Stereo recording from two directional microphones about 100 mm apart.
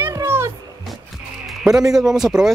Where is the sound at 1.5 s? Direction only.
5° right (ahead or behind).